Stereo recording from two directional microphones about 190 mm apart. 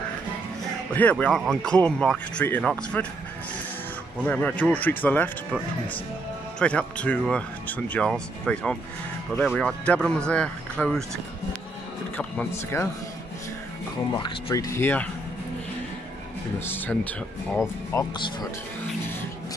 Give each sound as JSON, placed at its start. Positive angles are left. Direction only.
{"t": 0.9, "sound": "speech", "side_deg": 5}
{"t": 4.3, "sound": "speech", "side_deg": 10}
{"t": 6.6, "sound": "speech", "side_deg": 5}
{"t": 12.2, "sound": "speech", "side_deg": 5}
{"t": 14.1, "sound": "speech", "side_deg": 20}
{"t": 16.5, "sound": "speech", "side_deg": 10}
{"t": 17.9, "sound": "speech", "side_deg": 20}